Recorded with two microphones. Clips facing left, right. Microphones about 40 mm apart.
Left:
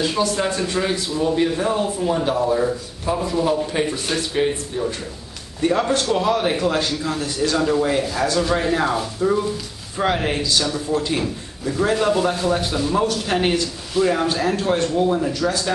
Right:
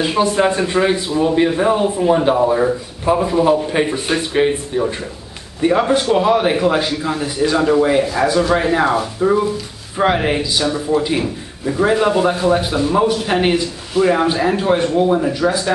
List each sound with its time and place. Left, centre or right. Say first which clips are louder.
0.0 s a man's voice: right 6 dB; right